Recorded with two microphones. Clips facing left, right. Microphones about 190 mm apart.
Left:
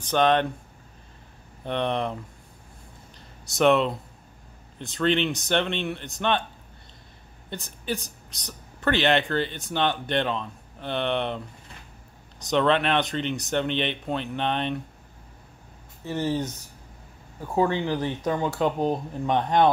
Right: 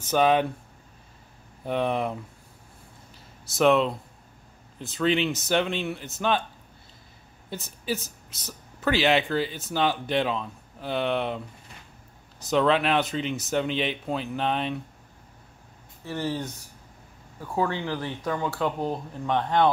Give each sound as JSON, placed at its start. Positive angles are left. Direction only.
{"t": 0.0, "sound": "speech", "side_deg": -5}
{"t": 1.6, "sound": "speech", "side_deg": -5}
{"t": 3.2, "sound": "a sound", "side_deg": 0}
{"t": 4.7, "sound": "speech", "side_deg": 0}
{"t": 7.4, "sound": "speech", "side_deg": -5}
{"t": 12.4, "sound": "speech", "side_deg": 0}
{"t": 16.1, "sound": "speech", "side_deg": 20}